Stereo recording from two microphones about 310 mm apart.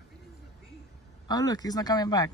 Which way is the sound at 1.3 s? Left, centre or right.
Centre.